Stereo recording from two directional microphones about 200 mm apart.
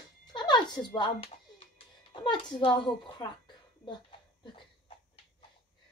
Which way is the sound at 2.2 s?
25° left (ahead or behind).